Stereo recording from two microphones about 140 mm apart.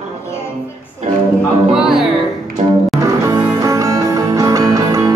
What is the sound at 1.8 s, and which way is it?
Music, 5° right (ahead or behind).